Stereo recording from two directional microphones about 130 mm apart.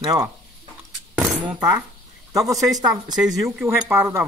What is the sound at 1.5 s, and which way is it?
Speech, 25° right (ahead or behind).